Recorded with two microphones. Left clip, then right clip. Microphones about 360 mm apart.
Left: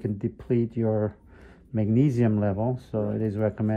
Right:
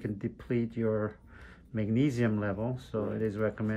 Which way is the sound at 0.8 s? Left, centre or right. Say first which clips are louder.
Left 3 dB; left.